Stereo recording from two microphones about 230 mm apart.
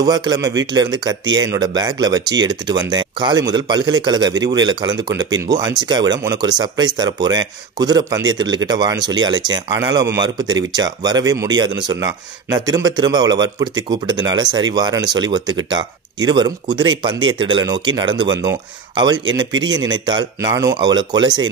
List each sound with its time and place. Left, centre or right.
0.0 s a man's voice: centre